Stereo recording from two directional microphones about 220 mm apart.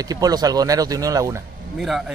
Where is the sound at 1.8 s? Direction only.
Centre (ahead or behind).